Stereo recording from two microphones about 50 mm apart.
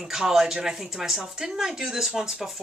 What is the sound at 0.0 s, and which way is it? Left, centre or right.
Speech, centre.